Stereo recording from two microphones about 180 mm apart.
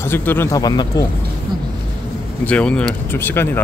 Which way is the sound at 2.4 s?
5° left (ahead or behind).